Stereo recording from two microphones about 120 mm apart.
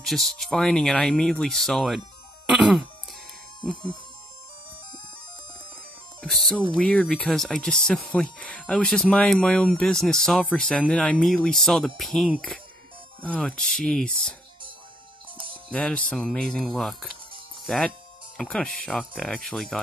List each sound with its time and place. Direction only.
0.0 s speech: centre (ahead or behind)
2.4 s throat clearing: 5° right (ahead or behind)
6.2 s speech: centre (ahead or behind)
15.3 s music: 45° right (ahead or behind)
15.7 s speech: 10° left (ahead or behind)